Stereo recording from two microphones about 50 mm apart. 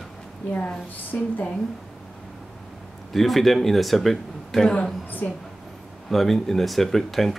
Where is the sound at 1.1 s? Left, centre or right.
Left.